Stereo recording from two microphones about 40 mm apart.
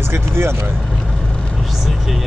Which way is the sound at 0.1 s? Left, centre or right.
Right.